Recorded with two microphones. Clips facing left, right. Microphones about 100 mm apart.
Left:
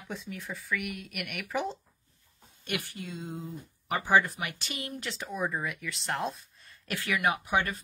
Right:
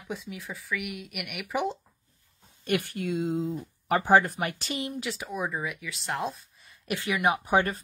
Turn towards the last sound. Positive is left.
turn(degrees=-35)  # may be behind; listen again after turning